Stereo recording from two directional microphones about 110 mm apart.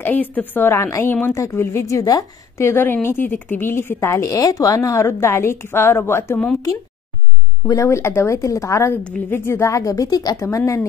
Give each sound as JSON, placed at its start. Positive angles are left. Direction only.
{"t": 0.0, "sound": "a woman's voice", "side_deg": 15}
{"t": 7.6, "sound": "a woman's voice", "side_deg": 30}